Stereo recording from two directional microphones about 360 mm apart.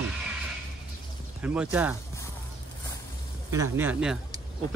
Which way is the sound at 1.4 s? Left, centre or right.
Centre.